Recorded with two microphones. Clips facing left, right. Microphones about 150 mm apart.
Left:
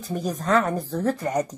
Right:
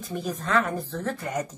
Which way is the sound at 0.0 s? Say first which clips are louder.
Left 3 dB; 40° left (ahead or behind).